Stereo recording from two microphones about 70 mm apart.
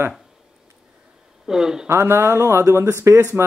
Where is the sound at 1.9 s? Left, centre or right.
Right.